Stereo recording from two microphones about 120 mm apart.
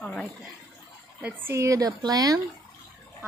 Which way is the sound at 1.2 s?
20° right (ahead or behind).